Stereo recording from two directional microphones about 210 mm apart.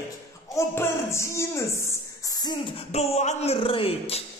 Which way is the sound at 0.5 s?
10° left (ahead or behind).